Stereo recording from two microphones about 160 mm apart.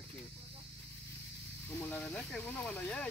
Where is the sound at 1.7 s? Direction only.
10° left (ahead or behind).